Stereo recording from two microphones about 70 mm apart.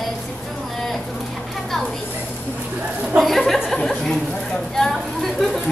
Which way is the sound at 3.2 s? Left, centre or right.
Centre.